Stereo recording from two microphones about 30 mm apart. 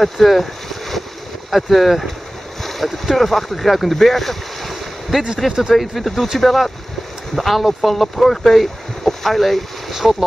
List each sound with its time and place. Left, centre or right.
0.0 s speech: centre
5.9 s speech: centre
10.0 s speech: centre